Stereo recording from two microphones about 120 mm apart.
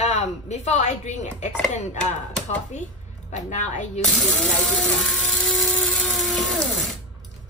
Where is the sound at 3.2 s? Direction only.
90° left.